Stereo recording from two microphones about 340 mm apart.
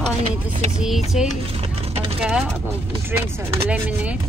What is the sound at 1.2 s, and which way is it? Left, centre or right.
Speech, centre.